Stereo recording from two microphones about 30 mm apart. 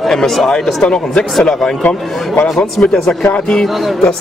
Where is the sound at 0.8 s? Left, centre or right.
Left.